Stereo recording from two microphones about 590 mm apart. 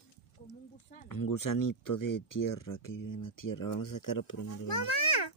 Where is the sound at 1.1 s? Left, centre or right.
Left.